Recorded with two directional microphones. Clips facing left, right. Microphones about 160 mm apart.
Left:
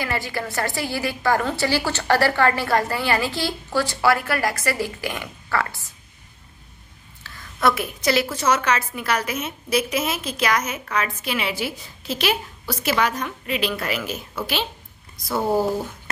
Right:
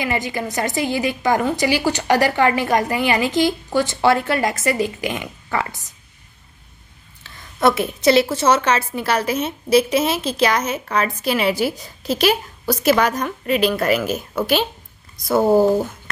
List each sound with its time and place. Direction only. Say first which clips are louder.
0.0 s a woman's voice: right 4 dB; 20° right (ahead or behind)
7.2 s a woman's voice: right 4 dB; 25° right (ahead or behind); by 14.7 s 45° right (ahead or behind)